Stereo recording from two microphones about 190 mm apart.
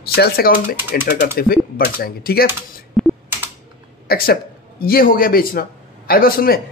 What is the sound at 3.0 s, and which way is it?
Computer keyboard, centre (ahead or behind).